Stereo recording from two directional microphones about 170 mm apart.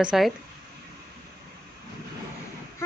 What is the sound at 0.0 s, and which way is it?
Speech, centre (ahead or behind).